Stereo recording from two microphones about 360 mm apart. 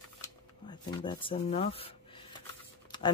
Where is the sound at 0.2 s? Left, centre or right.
Centre.